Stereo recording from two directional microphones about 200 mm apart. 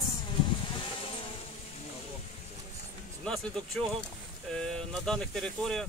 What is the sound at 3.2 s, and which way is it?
Speech, centre (ahead or behind).